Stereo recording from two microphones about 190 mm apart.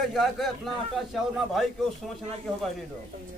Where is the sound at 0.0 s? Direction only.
Centre (ahead or behind).